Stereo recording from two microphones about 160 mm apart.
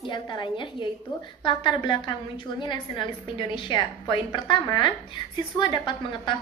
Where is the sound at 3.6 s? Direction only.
30° left (ahead or behind).